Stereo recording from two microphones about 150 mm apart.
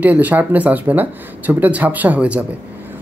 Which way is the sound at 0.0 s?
10° right (ahead or behind).